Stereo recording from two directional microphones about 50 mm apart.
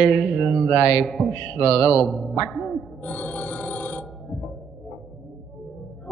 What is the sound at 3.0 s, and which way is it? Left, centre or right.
Telephone bell ringing, left.